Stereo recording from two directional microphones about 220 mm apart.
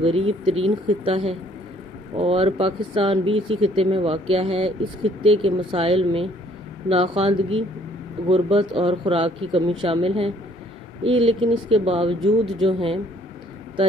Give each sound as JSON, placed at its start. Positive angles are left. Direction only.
{"t": 0.0, "sound": "speech", "side_deg": -25}